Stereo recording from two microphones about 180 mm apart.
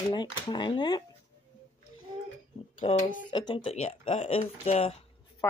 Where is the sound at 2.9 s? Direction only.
30° left (ahead or behind).